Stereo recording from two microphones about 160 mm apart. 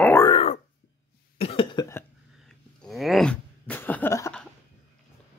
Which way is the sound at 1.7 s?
15° left (ahead or behind).